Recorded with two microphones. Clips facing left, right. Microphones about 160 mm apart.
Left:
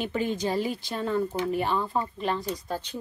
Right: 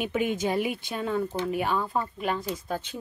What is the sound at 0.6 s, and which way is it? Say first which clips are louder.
Speech: even; 60° right (ahead or behind).